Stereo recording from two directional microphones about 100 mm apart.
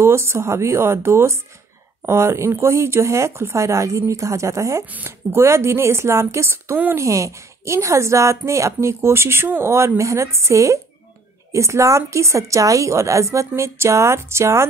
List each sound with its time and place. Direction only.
0.0 s a woman's voice: 25° right (ahead or behind)
7.1 s a woman's voice: 30° right (ahead or behind)